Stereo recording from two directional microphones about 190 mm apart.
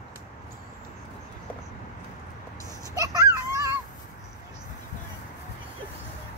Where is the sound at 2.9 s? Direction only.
15° right (ahead or behind).